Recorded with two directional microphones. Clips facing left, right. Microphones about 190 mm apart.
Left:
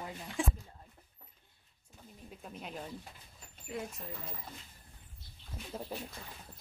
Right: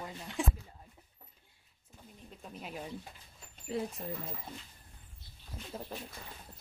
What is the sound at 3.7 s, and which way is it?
Speech, 30° right (ahead or behind).